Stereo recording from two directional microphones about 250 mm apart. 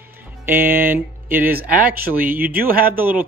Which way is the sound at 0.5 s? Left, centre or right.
Centre.